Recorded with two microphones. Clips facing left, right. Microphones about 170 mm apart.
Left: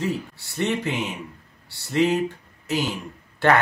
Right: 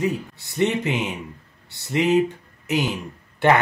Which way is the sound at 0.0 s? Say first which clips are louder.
Right 2 dB; 15° right (ahead or behind).